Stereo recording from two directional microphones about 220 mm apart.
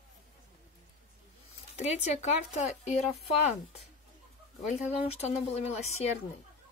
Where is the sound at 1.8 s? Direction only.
30° left (ahead or behind).